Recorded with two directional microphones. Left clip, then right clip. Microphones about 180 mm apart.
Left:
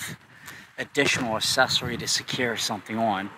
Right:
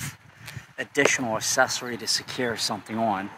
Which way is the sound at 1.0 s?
30° left (ahead or behind).